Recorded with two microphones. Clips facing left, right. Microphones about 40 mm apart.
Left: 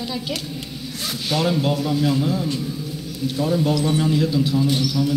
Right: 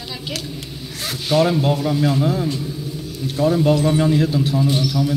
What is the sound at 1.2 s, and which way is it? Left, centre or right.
A woman's voice, right.